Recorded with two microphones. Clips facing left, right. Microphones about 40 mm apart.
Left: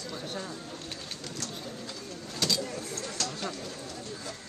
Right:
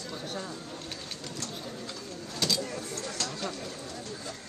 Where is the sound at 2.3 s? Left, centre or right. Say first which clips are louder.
Even; centre.